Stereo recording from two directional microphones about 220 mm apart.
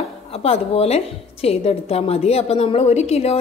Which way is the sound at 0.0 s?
25° left (ahead or behind).